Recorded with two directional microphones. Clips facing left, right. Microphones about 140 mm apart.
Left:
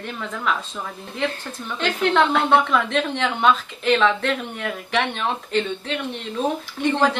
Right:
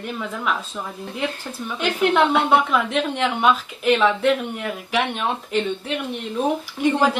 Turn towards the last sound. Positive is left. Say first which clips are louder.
# right 2 dB
turn(degrees=-10)  # may be behind; listen again after turning